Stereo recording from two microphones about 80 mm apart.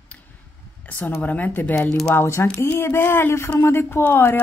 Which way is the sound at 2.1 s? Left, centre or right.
Left.